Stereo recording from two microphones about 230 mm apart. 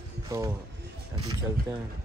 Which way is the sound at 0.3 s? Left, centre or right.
Centre.